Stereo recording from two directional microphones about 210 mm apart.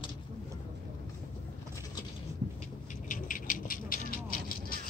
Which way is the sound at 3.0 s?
40° left (ahead or behind).